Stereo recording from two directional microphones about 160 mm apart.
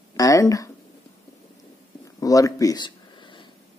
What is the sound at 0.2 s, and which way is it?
Speech, 20° left (ahead or behind).